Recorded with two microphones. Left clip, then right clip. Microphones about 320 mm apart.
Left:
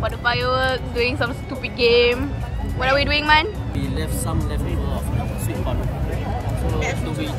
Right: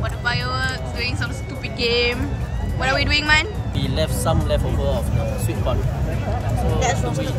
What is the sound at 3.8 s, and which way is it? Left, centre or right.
Speech, centre.